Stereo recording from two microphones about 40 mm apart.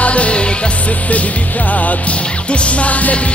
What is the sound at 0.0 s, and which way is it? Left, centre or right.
Music, left.